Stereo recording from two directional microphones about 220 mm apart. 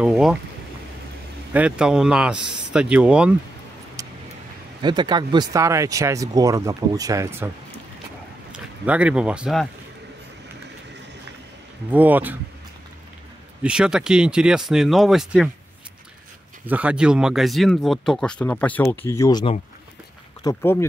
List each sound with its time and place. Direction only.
0.0 s speech: 5° right (ahead or behind)
1.5 s speech: 5° right (ahead or behind)
4.0 s vehicle: 15° right (ahead or behind)
4.8 s speech: 20° right (ahead or behind)
8.5 s speech: 5° right (ahead or behind)
11.9 s speech: 5° right (ahead or behind)
13.6 s speech: 5° right (ahead or behind)
16.6 s speech: 5° right (ahead or behind); by 20.8 s 10° left (ahead or behind)